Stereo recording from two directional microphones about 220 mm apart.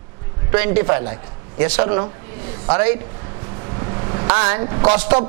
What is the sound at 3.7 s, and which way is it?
Vehicle, 20° right (ahead or behind).